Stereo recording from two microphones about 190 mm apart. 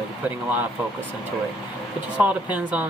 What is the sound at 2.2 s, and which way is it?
Speech, 5° right (ahead or behind).